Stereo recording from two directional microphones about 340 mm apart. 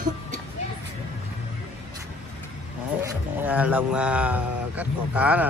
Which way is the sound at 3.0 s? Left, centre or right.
Centre.